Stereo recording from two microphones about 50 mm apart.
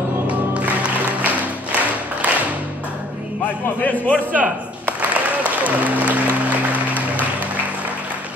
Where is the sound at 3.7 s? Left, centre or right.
Left.